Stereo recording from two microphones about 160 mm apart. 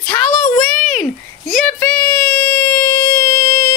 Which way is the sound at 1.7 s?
20° left (ahead or behind).